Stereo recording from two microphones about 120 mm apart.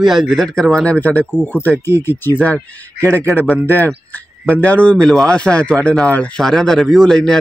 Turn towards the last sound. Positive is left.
turn(degrees=5)  # may be behind; listen again after turning